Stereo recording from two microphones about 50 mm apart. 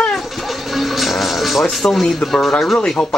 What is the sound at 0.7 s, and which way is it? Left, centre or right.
Music, centre.